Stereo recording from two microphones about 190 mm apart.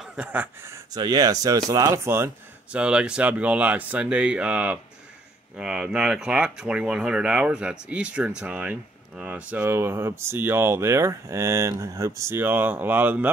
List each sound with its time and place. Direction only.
0.0 s speech: 5° right (ahead or behind)